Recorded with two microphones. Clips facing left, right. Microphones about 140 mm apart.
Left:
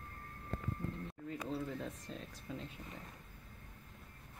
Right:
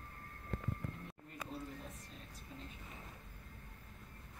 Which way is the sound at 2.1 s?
90° left.